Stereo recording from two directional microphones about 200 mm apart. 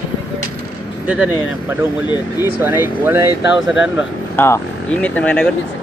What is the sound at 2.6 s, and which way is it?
Speech, 10° right (ahead or behind).